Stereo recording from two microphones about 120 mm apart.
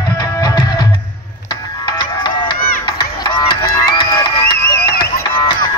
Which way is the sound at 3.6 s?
35° left (ahead or behind).